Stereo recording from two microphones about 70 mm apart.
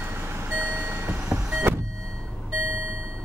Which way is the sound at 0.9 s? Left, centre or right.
Right.